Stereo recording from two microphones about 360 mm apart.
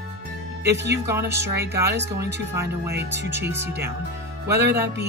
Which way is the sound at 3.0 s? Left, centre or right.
Right.